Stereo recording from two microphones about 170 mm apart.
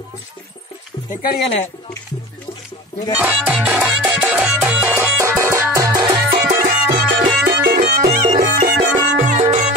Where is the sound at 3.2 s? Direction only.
10° right (ahead or behind).